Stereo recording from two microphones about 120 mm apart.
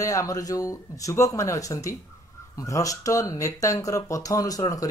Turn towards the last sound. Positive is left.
turn(degrees=30)  # may be behind; listen again after turning